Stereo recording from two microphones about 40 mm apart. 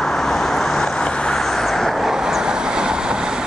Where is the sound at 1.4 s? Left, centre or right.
Centre.